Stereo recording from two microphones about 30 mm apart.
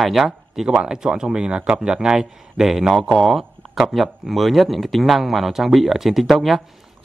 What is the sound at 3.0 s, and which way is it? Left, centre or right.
Speech, centre.